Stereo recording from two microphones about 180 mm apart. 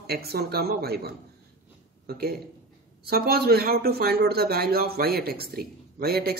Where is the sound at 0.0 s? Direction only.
60° right (ahead or behind).